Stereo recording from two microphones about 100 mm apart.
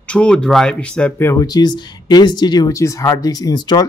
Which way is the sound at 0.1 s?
10° left (ahead or behind).